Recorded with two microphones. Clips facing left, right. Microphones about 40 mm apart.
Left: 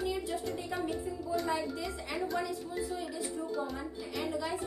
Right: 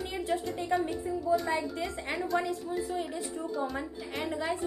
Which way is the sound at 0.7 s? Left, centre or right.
Centre.